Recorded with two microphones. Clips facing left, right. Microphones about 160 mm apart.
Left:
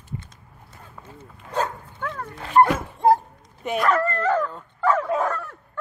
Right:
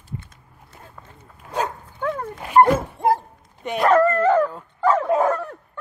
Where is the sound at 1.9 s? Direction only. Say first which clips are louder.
Right 8 dB; 20° right (ahead or behind).